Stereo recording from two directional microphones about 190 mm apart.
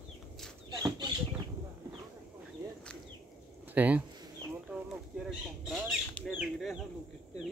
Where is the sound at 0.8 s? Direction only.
20° right (ahead or behind).